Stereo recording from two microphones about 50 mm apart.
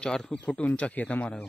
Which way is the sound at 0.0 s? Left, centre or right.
Centre.